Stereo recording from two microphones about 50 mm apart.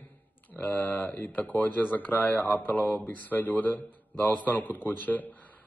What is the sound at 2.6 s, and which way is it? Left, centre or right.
Speech, left.